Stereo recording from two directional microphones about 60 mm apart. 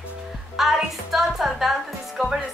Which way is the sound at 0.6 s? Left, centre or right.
Centre.